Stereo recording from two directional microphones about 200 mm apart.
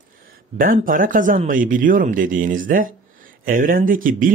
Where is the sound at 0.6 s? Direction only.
45° right (ahead or behind).